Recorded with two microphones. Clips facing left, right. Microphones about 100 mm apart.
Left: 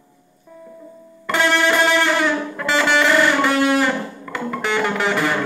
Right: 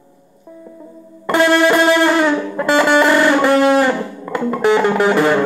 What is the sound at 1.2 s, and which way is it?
Music, 35° right (ahead or behind).